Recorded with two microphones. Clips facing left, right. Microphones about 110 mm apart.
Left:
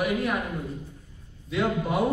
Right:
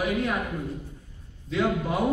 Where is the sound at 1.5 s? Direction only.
15° left (ahead or behind).